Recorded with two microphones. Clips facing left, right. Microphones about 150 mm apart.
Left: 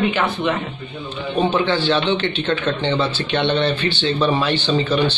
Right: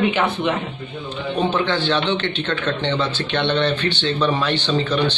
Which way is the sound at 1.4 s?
10° left (ahead or behind).